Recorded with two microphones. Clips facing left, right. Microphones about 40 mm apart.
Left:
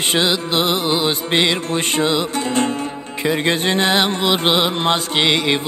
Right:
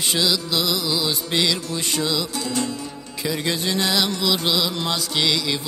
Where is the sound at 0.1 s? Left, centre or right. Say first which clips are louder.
Left 4 dB; left.